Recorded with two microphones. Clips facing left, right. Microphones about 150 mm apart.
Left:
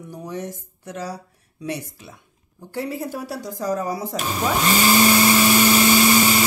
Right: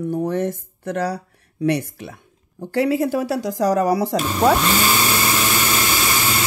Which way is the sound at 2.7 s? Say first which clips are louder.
Right 9 dB; 90° right.